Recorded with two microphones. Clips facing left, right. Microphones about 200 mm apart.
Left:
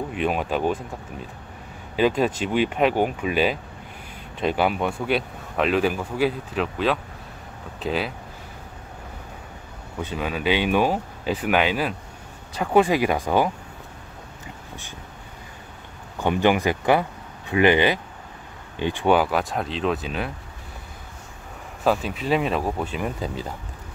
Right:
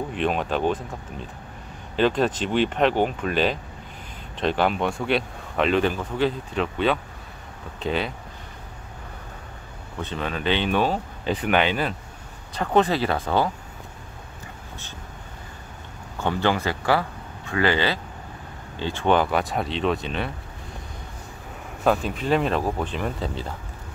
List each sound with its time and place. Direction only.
0.1 s speech: 5° left (ahead or behind)
2.0 s speech: 10° left (ahead or behind)
9.9 s speech: 10° left (ahead or behind)
16.2 s speech: 15° left (ahead or behind)
21.8 s speech: 5° left (ahead or behind)